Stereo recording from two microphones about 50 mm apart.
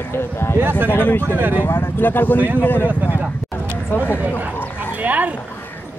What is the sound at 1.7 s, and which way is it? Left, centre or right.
Speech, left.